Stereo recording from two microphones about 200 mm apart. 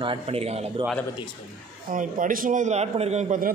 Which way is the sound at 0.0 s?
30° right (ahead or behind).